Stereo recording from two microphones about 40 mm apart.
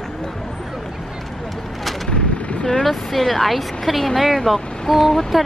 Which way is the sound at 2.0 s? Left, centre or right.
Left.